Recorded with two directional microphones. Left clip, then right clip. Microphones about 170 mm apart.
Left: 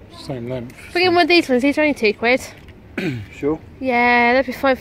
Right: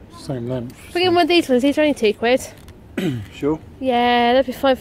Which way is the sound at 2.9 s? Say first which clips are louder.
Even; 55° right (ahead or behind).